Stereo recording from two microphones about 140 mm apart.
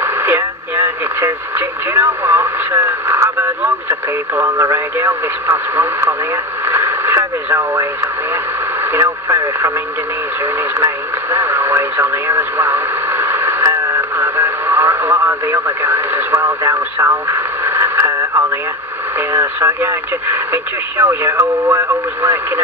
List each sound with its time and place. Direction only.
0.0 s radio: 15° right (ahead or behind)
2.0 s speech: 15° right (ahead or behind)
6.6 s radio: 15° right (ahead or behind)
8.9 s speech: 15° right (ahead or behind)
10.8 s radio: 15° right (ahead or behind)
19.3 s speech: 15° right (ahead or behind)